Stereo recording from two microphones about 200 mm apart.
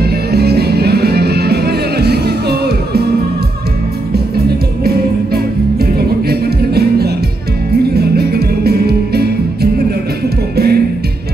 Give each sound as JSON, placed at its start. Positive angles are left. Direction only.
{"t": 0.0, "sound": "music", "side_deg": -55}
{"t": 4.1, "sound": "music", "side_deg": -50}